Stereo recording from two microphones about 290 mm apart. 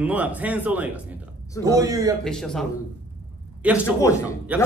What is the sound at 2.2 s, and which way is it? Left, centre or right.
Speech, centre.